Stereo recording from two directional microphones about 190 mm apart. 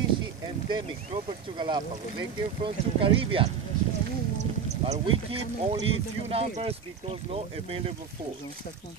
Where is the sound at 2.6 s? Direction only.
30° right (ahead or behind).